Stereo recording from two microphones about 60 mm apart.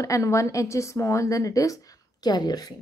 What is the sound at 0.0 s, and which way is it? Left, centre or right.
Speech, left.